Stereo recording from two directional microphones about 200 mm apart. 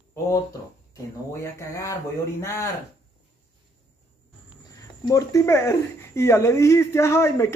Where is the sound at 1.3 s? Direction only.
15° left (ahead or behind).